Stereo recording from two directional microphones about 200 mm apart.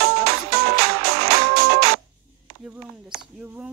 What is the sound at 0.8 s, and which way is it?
Music, 50° right (ahead or behind).